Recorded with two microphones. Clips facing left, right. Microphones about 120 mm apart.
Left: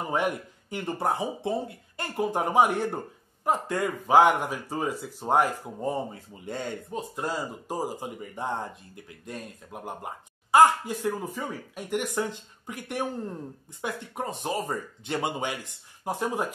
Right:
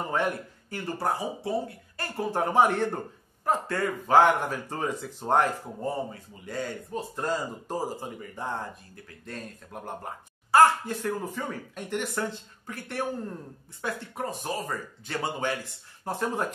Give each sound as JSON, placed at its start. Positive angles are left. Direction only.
{"t": 0.1, "sound": "speech", "side_deg": 15}
{"t": 6.4, "sound": "speech", "side_deg": 25}